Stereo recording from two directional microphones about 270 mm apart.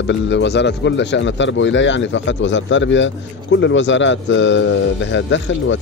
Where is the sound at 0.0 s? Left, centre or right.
Left.